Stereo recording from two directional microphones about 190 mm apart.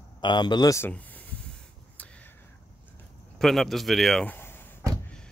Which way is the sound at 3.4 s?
Centre (ahead or behind).